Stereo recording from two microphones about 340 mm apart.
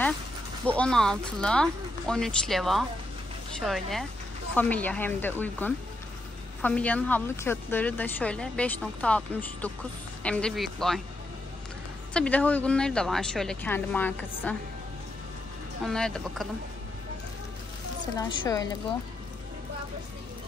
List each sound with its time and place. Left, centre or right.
0.7 s a woman's voice: centre
12.1 s a woman's voice: centre
15.9 s a woman's voice: centre
18.1 s a woman's voice: centre